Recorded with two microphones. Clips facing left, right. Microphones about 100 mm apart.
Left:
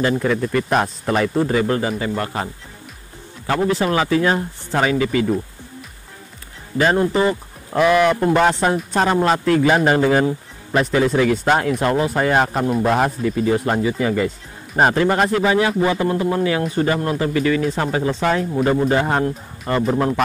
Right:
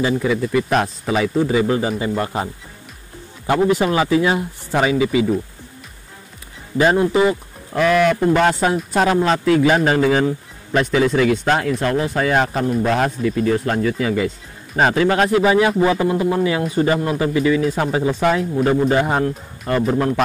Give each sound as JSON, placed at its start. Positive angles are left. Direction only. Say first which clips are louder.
{"t": 0.0, "sound": "speech", "louder": "even", "side_deg": -5}
{"t": 6.8, "sound": "speech", "louder": "right 2 dB", "side_deg": -5}
{"t": 7.7, "sound": "speech", "louder": "left 1 dB", "side_deg": 5}
{"t": 12.1, "sound": "speech", "louder": "even", "side_deg": 5}
{"t": 15.9, "sound": "speech", "louder": "right 1 dB", "side_deg": -15}
{"t": 17.7, "sound": "speech", "louder": "right 1 dB", "side_deg": -5}